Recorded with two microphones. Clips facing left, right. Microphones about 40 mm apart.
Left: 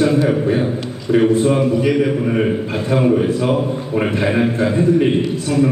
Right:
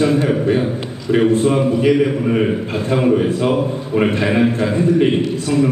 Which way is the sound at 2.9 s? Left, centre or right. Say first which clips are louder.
Even; centre.